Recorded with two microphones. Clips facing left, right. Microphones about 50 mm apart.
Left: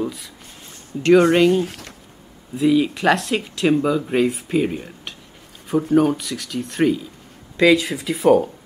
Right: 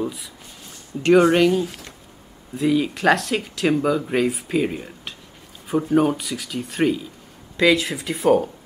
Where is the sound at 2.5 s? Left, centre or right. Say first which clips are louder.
Left 3 dB; centre.